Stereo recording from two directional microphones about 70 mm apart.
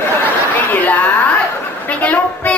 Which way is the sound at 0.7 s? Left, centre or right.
Left.